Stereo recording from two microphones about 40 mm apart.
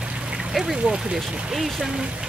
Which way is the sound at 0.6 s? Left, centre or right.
Centre.